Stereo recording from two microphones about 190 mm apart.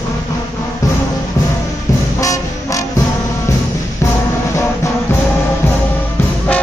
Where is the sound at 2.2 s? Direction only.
15° left (ahead or behind).